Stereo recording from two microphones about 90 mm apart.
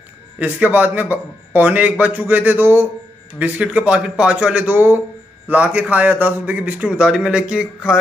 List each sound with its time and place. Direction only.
0.4 s a man's voice: 20° right (ahead or behind)